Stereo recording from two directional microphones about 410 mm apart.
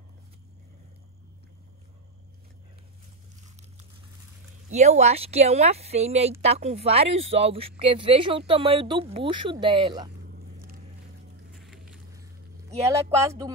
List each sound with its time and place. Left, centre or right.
4.6 s speech: centre
10.2 s vehicle: right
11.9 s a sound: centre